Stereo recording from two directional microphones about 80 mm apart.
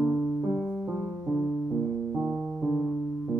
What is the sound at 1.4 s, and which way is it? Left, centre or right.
Music, centre.